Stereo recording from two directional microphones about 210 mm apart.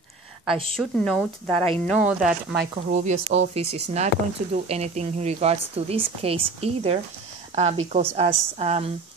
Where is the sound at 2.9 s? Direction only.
35° right (ahead or behind).